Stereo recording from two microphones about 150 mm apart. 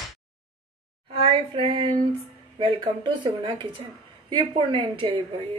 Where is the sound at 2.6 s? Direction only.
35° right (ahead or behind).